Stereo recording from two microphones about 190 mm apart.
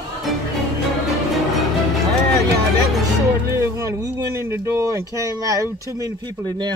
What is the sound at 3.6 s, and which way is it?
Speech, 15° right (ahead or behind).